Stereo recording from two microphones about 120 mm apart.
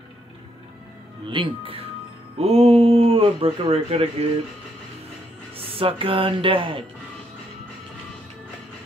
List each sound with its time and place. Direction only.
1.3 s speech: 45° right (ahead or behind)
2.3 s speech: 55° right (ahead or behind)
5.6 s speech: 50° right (ahead or behind)